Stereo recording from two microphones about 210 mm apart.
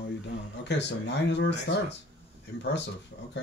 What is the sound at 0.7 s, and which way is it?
Speech, 55° left (ahead or behind).